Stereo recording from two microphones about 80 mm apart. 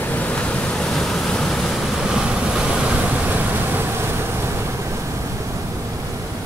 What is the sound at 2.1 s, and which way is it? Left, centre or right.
Waves, centre.